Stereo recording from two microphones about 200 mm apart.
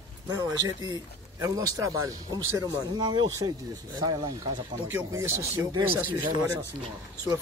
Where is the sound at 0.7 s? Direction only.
20° right (ahead or behind).